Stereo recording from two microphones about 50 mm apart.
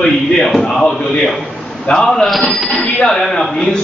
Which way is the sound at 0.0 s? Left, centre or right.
Centre.